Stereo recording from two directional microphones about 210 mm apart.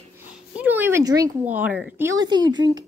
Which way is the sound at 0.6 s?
10° right (ahead or behind).